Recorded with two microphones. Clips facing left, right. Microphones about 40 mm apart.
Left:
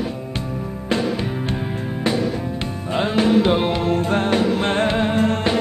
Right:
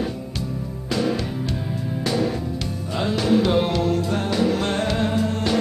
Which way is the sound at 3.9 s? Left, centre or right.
Left.